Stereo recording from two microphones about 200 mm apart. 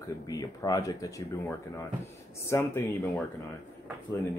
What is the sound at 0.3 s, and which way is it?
Speech, 15° left (ahead or behind).